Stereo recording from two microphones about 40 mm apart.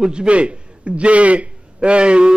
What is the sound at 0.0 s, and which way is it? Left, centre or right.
A man's voice, right.